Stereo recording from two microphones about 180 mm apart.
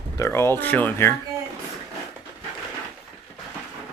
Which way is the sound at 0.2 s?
15° left (ahead or behind).